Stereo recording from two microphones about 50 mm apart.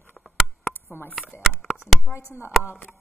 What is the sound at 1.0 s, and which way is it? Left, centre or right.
Speech, left.